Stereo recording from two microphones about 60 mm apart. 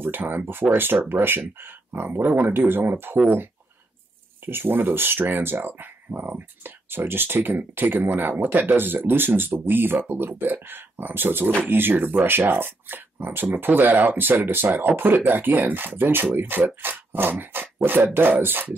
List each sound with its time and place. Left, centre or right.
0.0 s speech: right
4.5 s speech: right